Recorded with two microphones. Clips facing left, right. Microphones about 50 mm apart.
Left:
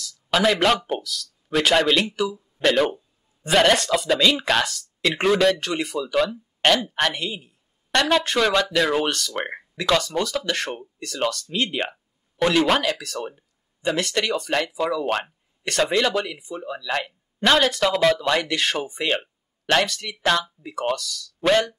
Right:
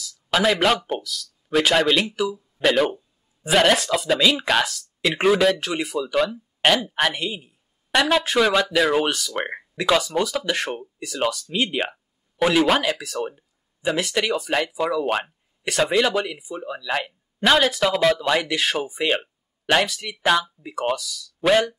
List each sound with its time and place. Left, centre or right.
0.0 s a man's voice: centre